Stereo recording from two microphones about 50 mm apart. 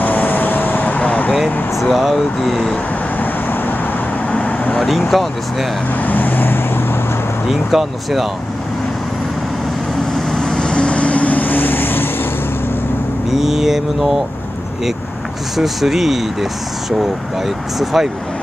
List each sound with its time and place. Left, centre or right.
0.0 s vehicle: left
1.3 s speech: centre
4.3 s vehicle: left
4.8 s speech: centre
6.0 s vehicle: left
7.4 s speech: centre
10.7 s vehicle: left
13.3 s speech: centre
15.5 s speech: centre
17.7 s speech: centre